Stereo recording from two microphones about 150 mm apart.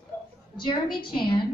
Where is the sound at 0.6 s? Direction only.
30° left (ahead or behind).